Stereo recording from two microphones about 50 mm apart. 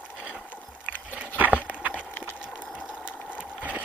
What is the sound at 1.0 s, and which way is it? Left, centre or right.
Biting, right.